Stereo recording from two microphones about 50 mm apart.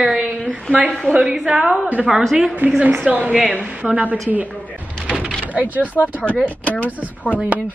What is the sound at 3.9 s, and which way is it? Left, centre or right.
Speech, right.